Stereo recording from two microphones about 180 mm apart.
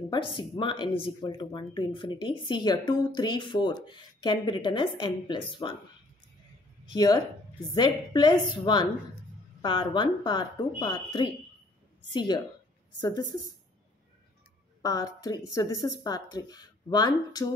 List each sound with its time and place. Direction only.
0.4 s speech: 25° left (ahead or behind)
6.9 s speech: 20° left (ahead or behind)
14.8 s speech: 20° left (ahead or behind)